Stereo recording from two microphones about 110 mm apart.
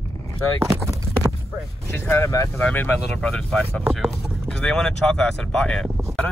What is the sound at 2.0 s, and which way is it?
Speech, 20° left (ahead or behind).